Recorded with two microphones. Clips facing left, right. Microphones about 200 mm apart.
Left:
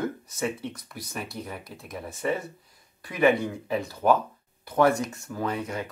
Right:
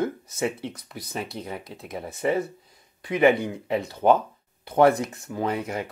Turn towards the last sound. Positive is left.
turn(degrees=-25)  # may be behind; listen again after turning